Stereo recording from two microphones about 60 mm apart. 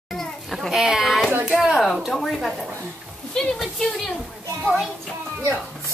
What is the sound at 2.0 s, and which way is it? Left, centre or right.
Speech, centre.